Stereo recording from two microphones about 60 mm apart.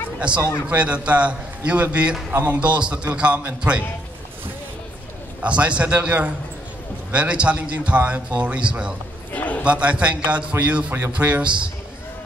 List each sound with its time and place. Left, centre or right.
0.7 s a man's voice: right
5.4 s a man's voice: right
9.3 s a sound: left
9.6 s a man's voice: right